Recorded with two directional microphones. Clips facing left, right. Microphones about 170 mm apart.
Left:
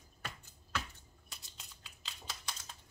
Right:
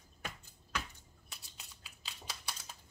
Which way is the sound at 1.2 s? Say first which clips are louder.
Even; 5° right (ahead or behind).